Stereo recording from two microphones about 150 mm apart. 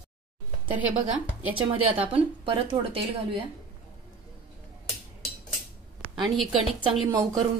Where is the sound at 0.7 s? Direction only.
10° right (ahead or behind).